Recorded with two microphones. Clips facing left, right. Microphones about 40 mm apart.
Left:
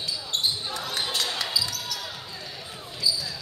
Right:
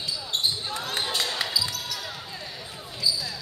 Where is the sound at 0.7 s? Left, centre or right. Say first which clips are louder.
Right 1 dB; centre.